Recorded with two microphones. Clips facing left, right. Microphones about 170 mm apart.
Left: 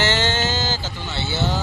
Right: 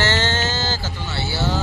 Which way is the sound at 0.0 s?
15° left (ahead or behind).